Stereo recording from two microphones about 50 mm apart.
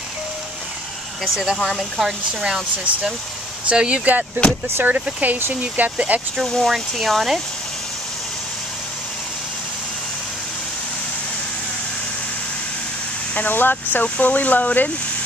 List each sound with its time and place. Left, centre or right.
1.2 s speech: centre
2.0 s speech: centre
3.7 s speech: centre
4.0 s speech: right
4.6 s speech: right
4.9 s speech: right
6.4 s speech: centre
13.3 s speech: left
14.0 s speech: left